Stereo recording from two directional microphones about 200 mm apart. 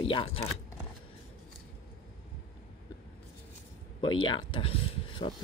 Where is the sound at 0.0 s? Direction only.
25° left (ahead or behind).